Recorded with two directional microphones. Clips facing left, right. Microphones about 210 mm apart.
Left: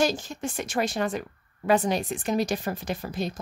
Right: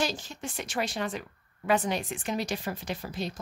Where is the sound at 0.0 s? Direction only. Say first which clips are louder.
Left 6 dB; 45° left (ahead or behind).